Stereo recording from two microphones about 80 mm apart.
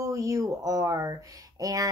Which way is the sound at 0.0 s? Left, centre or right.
Right.